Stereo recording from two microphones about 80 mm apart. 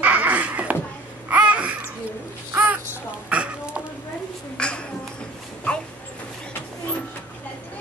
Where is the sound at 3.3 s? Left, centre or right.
Centre.